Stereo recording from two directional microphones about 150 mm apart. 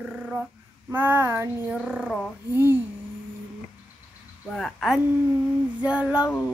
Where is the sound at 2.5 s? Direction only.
15° right (ahead or behind).